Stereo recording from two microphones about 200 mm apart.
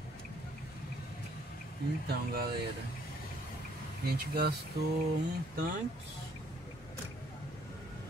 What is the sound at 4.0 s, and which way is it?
Speech, 50° right (ahead or behind).